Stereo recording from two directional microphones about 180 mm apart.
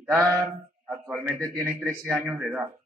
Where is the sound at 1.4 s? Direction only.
15° right (ahead or behind).